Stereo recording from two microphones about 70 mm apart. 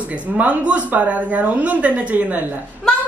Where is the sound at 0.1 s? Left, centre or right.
Right.